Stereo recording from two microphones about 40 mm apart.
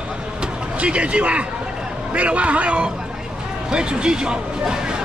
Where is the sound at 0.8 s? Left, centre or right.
Right.